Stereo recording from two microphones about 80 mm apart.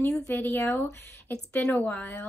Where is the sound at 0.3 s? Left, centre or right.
Left.